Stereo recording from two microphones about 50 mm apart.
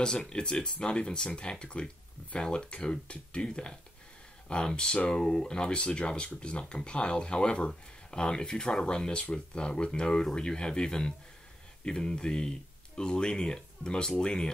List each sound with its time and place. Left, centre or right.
0.0 s speech: centre